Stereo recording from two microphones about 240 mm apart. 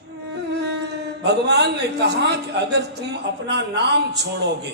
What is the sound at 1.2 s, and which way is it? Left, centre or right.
A man's voice, right.